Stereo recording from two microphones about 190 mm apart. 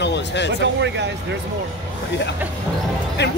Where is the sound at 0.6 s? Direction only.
65° right (ahead or behind).